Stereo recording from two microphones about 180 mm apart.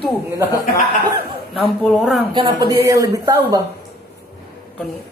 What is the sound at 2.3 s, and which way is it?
Speech, 25° right (ahead or behind).